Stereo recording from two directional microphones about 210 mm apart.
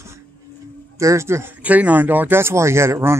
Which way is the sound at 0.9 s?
15° right (ahead or behind).